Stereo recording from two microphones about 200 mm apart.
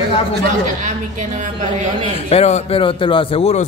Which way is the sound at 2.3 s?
35° left (ahead or behind).